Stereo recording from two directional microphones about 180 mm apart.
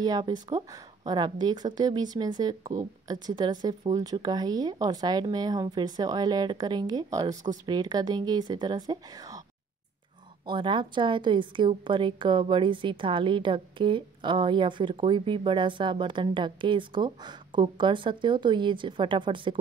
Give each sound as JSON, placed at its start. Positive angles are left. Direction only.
{"t": 0.0, "sound": "a woman's voice", "side_deg": -20}
{"t": 10.4, "sound": "a woman's voice", "side_deg": -25}